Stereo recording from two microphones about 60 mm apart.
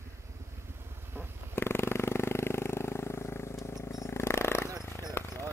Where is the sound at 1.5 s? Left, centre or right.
Left.